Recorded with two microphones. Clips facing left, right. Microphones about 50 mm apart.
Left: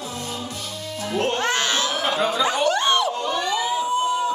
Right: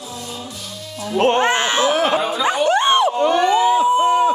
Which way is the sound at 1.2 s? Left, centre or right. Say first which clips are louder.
Right 7 dB; right.